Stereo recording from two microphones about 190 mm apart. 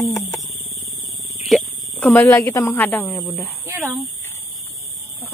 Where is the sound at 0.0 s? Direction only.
20° left (ahead or behind).